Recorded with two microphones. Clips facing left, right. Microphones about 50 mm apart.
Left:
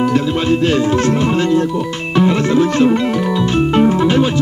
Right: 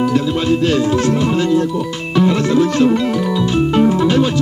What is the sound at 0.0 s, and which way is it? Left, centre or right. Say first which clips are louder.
Speech: left 1 dB; left.